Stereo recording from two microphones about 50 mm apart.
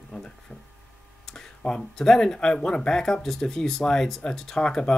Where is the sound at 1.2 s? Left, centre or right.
Centre.